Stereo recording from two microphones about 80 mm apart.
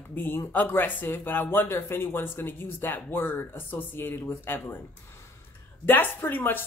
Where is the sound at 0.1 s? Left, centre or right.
Left.